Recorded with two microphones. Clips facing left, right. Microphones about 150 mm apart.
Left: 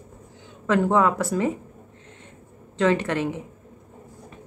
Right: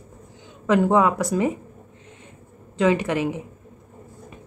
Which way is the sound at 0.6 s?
15° right (ahead or behind).